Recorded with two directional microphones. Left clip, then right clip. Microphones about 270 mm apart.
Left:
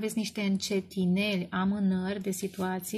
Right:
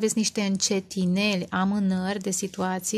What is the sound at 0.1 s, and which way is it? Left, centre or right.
Speech, right.